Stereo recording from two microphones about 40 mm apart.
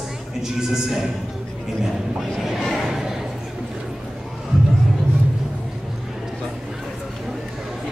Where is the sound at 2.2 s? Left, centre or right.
Centre.